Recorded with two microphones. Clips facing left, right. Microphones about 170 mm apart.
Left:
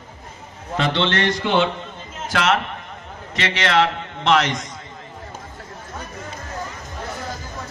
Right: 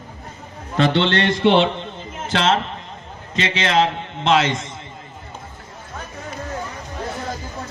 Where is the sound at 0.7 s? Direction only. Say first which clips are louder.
Right 3 dB; 30° right (ahead or behind).